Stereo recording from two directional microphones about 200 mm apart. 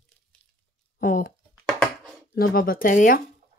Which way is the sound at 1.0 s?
45° left (ahead or behind).